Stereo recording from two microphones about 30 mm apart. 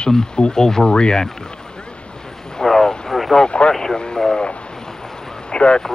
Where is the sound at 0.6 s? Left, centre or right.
Centre.